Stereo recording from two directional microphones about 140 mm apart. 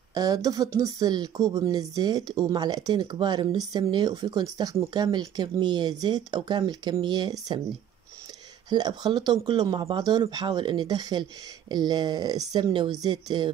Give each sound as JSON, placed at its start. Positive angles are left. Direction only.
{"t": 0.1, "sound": "speech", "side_deg": -25}
{"t": 8.6, "sound": "speech", "side_deg": -30}